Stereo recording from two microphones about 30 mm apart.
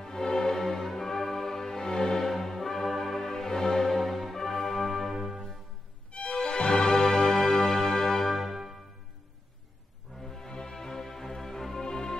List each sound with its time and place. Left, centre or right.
0.0 s music: centre
0.6 s music: centre
2.2 s music: centre
5.1 s music: centre
6.3 s music: left; by 8.3 s centre
8.3 s music: centre
10.1 s music: centre